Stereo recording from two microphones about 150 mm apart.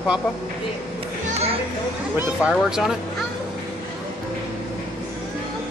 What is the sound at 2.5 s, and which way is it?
Speech, 5° right (ahead or behind).